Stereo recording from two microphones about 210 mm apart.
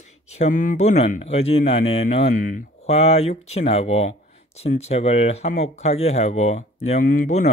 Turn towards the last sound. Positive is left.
turn(degrees=35)  # may be behind; listen again after turning